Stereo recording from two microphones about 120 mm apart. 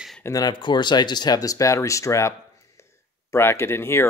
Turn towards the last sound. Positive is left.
turn(degrees=20)  # may be behind; listen again after turning